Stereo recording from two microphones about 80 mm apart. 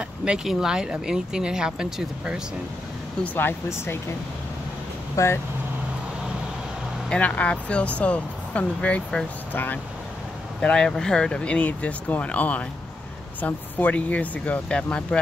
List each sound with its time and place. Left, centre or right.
0.0 s speech: centre
3.3 s speech: left
5.1 s speech: left
7.1 s speech: centre
10.6 s speech: centre